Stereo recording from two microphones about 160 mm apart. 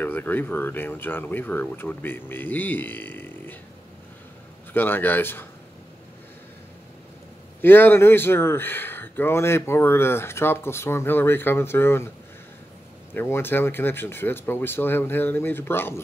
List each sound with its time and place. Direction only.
0.0 s speech: 10° left (ahead or behind)
4.7 s speech: 10° left (ahead or behind)
7.6 s speech: 15° left (ahead or behind)
13.1 s speech: 15° left (ahead or behind)